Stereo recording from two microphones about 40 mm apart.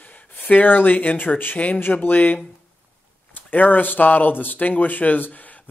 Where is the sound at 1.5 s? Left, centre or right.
Left.